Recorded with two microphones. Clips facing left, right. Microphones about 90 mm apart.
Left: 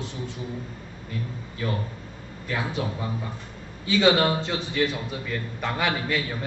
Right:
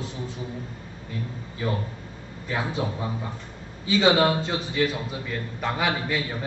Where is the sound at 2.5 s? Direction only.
25° right (ahead or behind).